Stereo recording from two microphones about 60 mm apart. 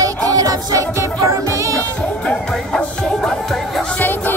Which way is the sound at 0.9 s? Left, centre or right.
Right.